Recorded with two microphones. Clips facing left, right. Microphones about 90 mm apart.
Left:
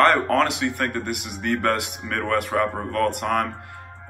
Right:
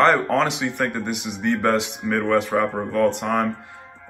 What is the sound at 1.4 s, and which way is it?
Speech, 15° right (ahead or behind).